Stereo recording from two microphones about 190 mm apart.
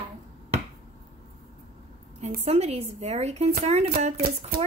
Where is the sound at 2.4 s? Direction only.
35° right (ahead or behind).